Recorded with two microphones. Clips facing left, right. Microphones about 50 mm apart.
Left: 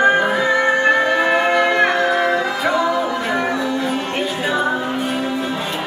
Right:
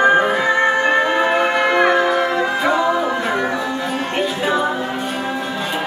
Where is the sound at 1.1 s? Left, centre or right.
Centre.